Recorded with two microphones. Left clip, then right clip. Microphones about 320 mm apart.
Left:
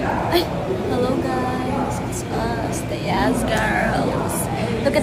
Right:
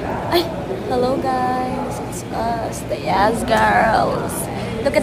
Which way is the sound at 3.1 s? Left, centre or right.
Centre.